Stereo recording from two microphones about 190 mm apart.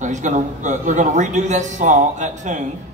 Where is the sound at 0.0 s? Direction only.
40° right (ahead or behind).